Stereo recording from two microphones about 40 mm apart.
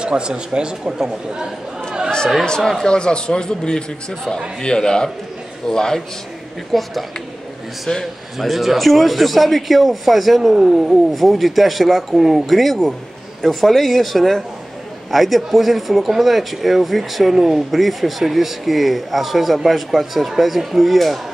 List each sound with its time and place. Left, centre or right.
0.0 s speech: right
2.4 s a man's voice: centre
6.7 s speech: centre
7.9 s a man's voice: left
8.4 s speech: centre